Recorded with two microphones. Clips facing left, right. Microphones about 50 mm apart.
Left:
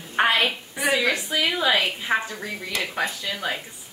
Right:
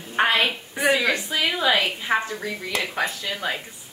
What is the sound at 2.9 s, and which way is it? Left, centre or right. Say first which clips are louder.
Speech: right 1 dB; centre.